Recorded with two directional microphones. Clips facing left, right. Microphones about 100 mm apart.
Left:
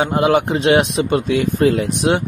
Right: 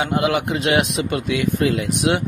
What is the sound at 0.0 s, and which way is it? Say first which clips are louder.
Speech: left 4 dB; 35° left (ahead or behind).